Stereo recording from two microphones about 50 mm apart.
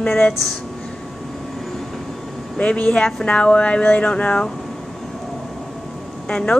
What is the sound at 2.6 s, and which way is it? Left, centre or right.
A woman's voice, left.